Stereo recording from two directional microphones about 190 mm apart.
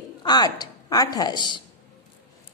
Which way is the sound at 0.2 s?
20° left (ahead or behind).